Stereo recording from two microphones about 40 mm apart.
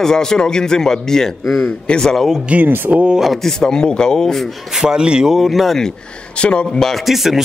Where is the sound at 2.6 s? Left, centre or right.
Right.